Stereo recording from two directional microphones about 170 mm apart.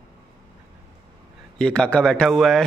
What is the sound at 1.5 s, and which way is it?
Speech, 5° left (ahead or behind).